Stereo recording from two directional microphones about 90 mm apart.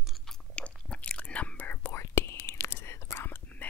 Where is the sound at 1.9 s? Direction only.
30° left (ahead or behind).